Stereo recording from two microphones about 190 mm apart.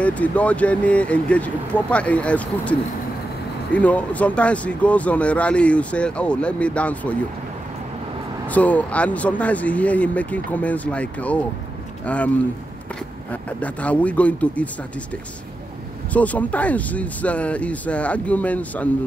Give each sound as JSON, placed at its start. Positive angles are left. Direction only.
{"t": 0.0, "sound": "speech", "side_deg": 5}
{"t": 8.5, "sound": "speech", "side_deg": 10}
{"t": 13.3, "sound": "speech", "side_deg": 5}
{"t": 16.1, "sound": "speech", "side_deg": 10}